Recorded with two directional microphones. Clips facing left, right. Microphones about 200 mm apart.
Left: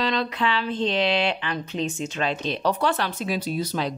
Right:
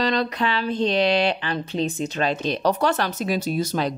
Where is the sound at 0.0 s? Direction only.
40° right (ahead or behind).